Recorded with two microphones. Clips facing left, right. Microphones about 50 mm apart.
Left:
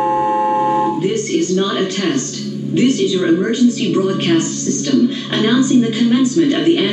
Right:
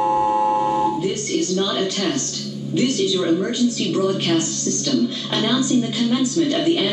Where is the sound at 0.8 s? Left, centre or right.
Left.